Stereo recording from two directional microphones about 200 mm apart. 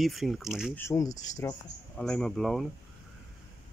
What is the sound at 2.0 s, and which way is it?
Speech, 5° left (ahead or behind).